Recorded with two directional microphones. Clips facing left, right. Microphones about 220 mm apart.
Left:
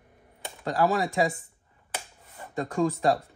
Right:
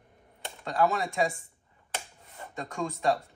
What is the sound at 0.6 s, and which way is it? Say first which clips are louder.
Speech: left 2 dB; 35° left (ahead or behind).